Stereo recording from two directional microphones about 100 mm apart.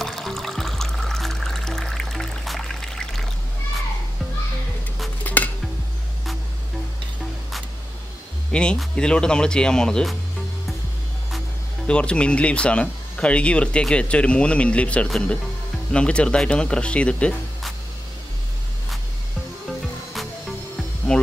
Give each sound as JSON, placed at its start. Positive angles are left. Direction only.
{"t": 0.0, "sound": "music", "side_deg": 5}
{"t": 5.2, "sound": "dishes", "side_deg": 15}
{"t": 8.5, "sound": "speech", "side_deg": 10}
{"t": 11.9, "sound": "speech", "side_deg": 10}
{"t": 21.1, "sound": "music", "side_deg": 10}